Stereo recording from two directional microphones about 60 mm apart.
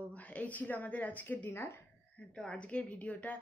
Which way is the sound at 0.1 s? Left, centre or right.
Left.